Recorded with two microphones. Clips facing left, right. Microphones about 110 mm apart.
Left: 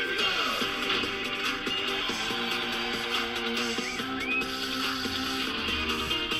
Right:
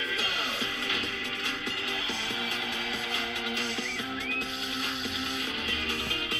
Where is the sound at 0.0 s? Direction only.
30° left (ahead or behind).